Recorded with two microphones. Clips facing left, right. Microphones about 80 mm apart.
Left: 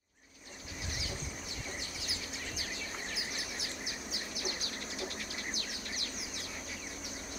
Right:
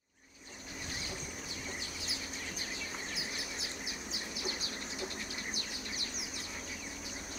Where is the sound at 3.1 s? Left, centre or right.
Right.